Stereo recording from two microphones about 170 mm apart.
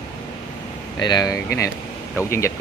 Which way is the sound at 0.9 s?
25° left (ahead or behind).